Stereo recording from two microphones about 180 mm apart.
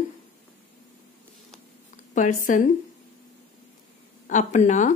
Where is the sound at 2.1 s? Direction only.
45° left (ahead or behind).